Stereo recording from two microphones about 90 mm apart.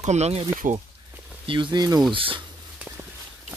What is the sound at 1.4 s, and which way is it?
Speech, 65° right (ahead or behind).